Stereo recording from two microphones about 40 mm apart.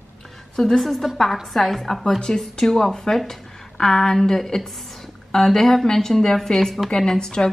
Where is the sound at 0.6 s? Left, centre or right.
Centre.